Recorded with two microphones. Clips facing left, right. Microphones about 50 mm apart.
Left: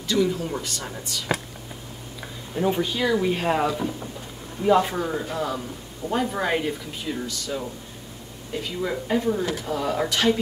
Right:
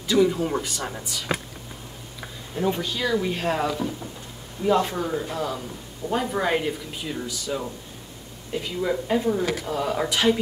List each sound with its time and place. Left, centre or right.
0.1 s speech: centre
2.5 s speech: centre
8.8 s speech: centre
9.4 s speech: right
9.7 s speech: centre
10.0 s speech: centre